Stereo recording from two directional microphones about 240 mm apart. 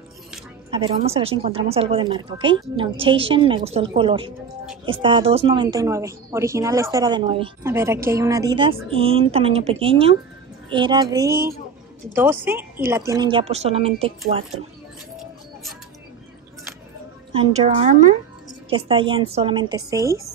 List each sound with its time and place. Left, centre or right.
0.7 s a woman's voice: right
17.3 s a woman's voice: right